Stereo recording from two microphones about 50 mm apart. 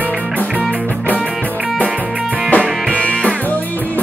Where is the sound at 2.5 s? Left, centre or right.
Left.